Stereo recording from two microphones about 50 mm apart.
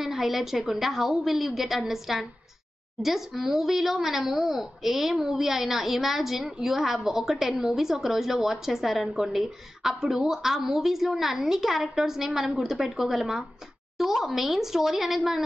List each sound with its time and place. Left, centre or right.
0.0 s a woman's voice: centre
9.0 s a woman's voice: right
9.8 s a woman's voice: centre